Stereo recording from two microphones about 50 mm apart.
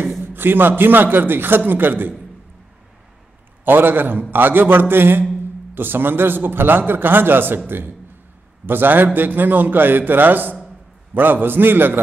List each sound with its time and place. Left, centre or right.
0.2 s a man's voice: right
3.6 s a man's voice: right